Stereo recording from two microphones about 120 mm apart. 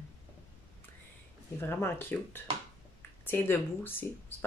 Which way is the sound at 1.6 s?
20° left (ahead or behind).